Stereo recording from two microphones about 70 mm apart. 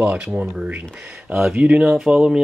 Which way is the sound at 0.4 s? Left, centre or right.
Centre.